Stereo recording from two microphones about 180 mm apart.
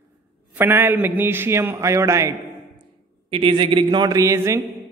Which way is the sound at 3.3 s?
30° right (ahead or behind).